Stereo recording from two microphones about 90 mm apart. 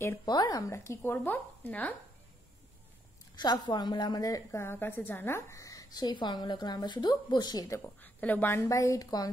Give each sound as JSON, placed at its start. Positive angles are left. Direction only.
{"t": 0.2, "sound": "a woman's voice", "side_deg": 45}
{"t": 1.1, "sound": "speech", "side_deg": 20}
{"t": 3.3, "sound": "a woman's voice", "side_deg": 55}
{"t": 4.6, "sound": "a woman's voice", "side_deg": 25}
{"t": 7.8, "sound": "speech", "side_deg": 20}
{"t": 8.6, "sound": "a woman's voice", "side_deg": 35}